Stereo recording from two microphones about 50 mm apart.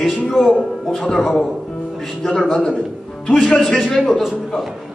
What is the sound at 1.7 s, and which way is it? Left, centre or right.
Music, centre.